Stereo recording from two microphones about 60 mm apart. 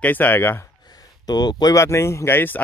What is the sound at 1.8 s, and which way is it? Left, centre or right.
Speech, left.